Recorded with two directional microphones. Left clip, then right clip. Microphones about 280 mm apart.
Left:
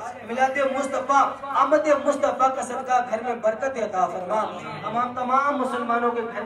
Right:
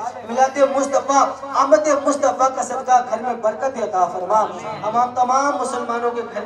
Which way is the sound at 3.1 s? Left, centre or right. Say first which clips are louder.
Right 3 dB; right.